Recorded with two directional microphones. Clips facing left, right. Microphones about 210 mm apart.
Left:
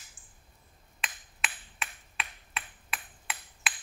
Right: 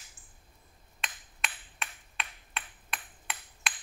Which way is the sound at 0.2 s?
40° right (ahead or behind).